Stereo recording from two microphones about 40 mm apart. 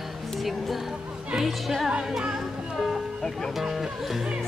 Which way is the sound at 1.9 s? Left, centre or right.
Centre.